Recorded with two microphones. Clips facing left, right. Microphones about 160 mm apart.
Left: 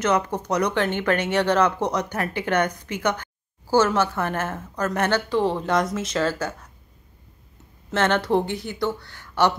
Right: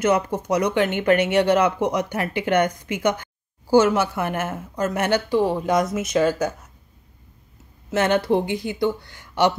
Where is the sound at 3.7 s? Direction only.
10° right (ahead or behind).